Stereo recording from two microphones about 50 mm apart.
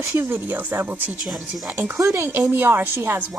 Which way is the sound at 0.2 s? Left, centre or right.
Right.